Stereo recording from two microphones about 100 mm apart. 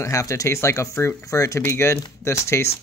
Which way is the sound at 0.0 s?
30° left (ahead or behind).